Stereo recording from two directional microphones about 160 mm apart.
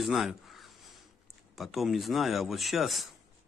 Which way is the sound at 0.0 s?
Centre (ahead or behind).